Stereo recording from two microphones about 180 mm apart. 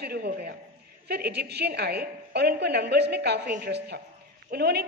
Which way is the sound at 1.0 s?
65° right (ahead or behind).